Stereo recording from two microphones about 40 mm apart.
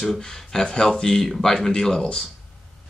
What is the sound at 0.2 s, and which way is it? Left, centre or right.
Speech, centre.